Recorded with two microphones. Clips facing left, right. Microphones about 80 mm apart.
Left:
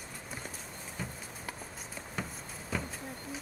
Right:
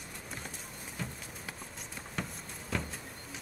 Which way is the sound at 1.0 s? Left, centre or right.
Centre.